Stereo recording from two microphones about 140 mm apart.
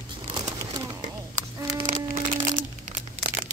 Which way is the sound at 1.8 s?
65° right (ahead or behind).